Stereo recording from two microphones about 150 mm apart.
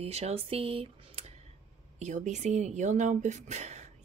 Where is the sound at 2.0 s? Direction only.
50° right (ahead or behind).